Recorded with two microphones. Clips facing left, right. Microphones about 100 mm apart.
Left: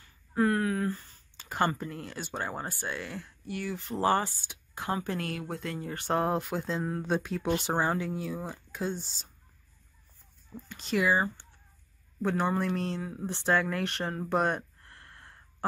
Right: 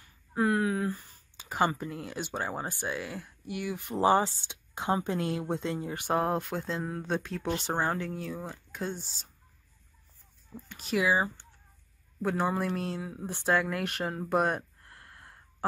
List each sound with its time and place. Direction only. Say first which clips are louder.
0.0 s a sound: left 1 dB; 15° right (ahead or behind)
2.7 s speech: right 2 dB; 10° right (ahead or behind)
6.2 s speech: left 1 dB; centre (ahead or behind)
10.5 s speech: even; 5° right (ahead or behind)